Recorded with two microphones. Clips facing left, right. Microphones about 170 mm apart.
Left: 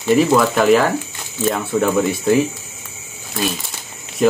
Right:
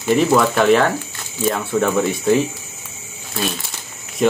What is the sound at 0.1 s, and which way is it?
Speech, centre (ahead or behind).